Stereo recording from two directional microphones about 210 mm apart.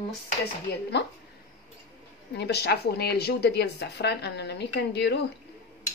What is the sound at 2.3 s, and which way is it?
A woman's voice, 50° left (ahead or behind).